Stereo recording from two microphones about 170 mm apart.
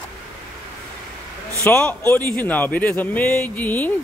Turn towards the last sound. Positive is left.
turn(degrees=10)  # may be behind; listen again after turning